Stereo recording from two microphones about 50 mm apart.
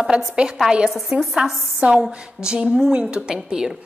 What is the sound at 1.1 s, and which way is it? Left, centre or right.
A woman's voice, right.